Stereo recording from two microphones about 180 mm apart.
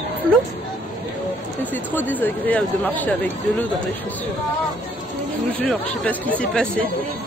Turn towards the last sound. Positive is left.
turn(degrees=5)  # may be behind; listen again after turning